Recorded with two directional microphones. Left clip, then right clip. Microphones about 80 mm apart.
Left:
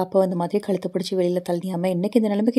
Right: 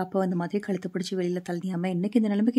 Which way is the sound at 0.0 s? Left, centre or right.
Left.